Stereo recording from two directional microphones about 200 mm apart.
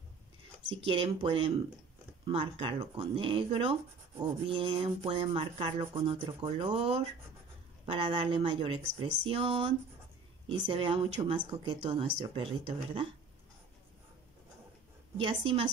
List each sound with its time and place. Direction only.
0.7 s speech: 30° right (ahead or behind)
10.7 s speech: 25° right (ahead or behind)
15.1 s speech: 25° right (ahead or behind)